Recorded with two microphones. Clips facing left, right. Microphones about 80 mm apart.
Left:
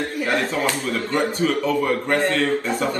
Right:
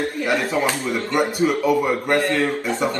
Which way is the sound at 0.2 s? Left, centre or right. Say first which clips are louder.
Right 1 dB; centre.